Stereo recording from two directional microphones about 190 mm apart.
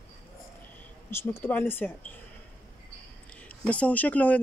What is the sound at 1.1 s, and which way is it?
Speech, 15° left (ahead or behind).